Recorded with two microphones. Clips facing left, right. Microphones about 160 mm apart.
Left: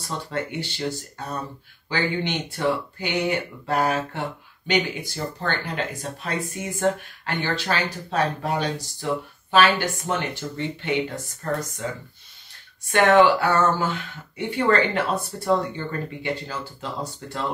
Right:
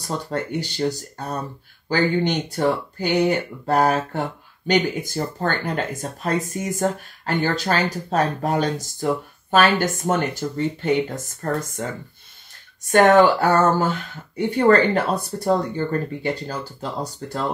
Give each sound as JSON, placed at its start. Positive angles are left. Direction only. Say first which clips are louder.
{"t": 0.3, "sound": "speech", "louder": "right 1 dB", "side_deg": -40}
{"t": 12.8, "sound": "speech", "louder": "right 3 dB", "side_deg": -40}